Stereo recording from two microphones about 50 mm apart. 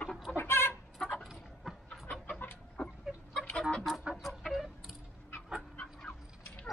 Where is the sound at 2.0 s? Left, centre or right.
Left.